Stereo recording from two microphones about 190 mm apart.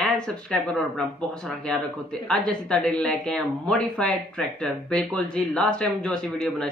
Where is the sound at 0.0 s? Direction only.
5° left (ahead or behind).